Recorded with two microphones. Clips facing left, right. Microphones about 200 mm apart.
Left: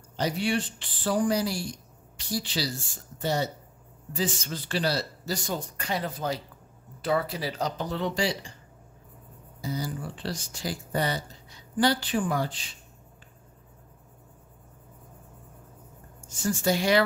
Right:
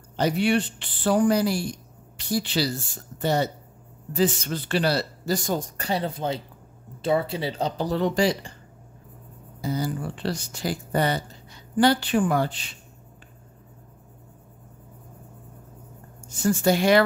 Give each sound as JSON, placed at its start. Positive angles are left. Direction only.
{"t": 0.2, "sound": "speech", "side_deg": -65}
{"t": 5.8, "sound": "speech", "side_deg": -30}
{"t": 9.6, "sound": "speech", "side_deg": -60}
{"t": 16.3, "sound": "speech", "side_deg": -60}